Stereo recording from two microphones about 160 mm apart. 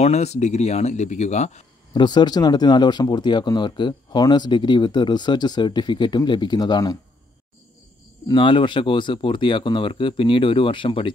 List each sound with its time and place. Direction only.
0.0 s speech: 45° left (ahead or behind)
2.0 s speech: 25° left (ahead or behind)
8.3 s speech: 30° left (ahead or behind)